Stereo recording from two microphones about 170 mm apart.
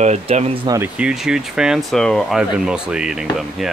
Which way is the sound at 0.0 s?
40° right (ahead or behind).